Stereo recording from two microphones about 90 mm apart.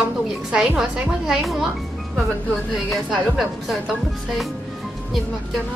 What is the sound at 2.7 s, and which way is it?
Speech, 5° right (ahead or behind).